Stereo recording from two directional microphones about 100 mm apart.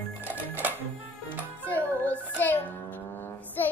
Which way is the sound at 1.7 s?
15° left (ahead or behind).